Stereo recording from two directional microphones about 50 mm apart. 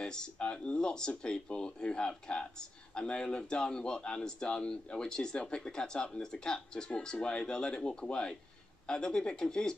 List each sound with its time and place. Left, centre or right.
0.0 s speech: centre